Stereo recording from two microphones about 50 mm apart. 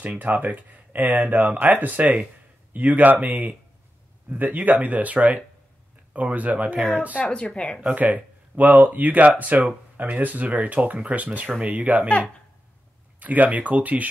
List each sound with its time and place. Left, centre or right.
0.2 s speech: right
7.2 s speech: left
7.9 s speech: right
13.2 s speech: right